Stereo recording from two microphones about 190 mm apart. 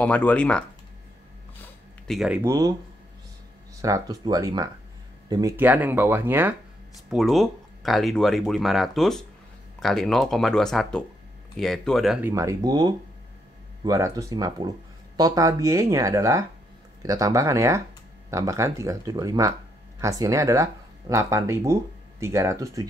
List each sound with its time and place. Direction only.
0.0 s speech: 5° left (ahead or behind)
2.0 s speech: 5° right (ahead or behind)
3.8 s speech: 20° right (ahead or behind); by 12.2 s centre (ahead or behind)
12.2 s speech: 15° right (ahead or behind)